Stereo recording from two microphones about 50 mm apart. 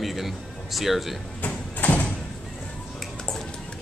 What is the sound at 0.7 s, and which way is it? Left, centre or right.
Speech, centre.